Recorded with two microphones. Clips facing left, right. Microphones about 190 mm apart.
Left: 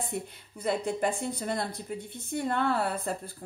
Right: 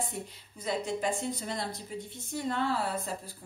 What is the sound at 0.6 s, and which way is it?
Speech, 60° left (ahead or behind).